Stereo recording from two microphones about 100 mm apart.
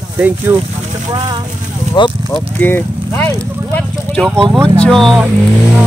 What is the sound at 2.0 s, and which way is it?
Speech, 55° left (ahead or behind).